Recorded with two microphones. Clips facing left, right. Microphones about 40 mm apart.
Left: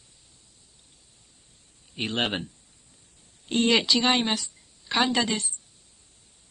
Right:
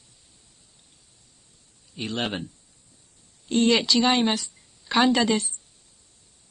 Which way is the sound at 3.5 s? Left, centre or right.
Centre.